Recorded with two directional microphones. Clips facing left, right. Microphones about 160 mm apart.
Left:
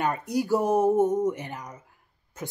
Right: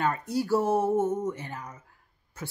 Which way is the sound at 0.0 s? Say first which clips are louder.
Left 1 dB; 15° left (ahead or behind).